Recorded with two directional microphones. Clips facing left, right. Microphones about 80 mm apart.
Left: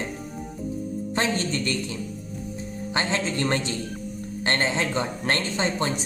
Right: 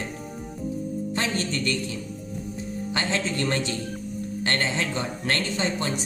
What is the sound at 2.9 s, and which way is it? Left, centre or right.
Speech, left.